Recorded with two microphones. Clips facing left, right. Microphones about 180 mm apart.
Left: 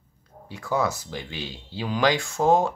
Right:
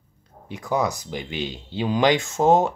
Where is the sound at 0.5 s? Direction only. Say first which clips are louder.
Right 2 dB; 15° right (ahead or behind).